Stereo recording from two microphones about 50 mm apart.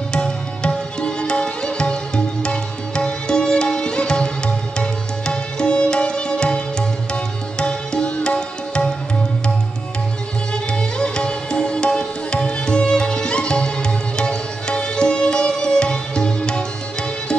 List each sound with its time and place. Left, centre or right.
0.1 s music: centre
10.5 s music: centre